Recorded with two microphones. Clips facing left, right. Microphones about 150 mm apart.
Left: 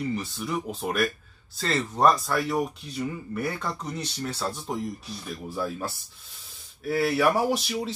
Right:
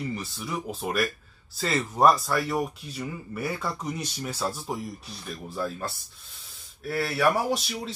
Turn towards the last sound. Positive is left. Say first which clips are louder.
# left 3 dB
turn(degrees=0)  # may be behind; listen again after turning